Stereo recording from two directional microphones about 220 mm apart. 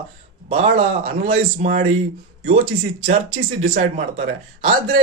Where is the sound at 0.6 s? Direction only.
40° right (ahead or behind).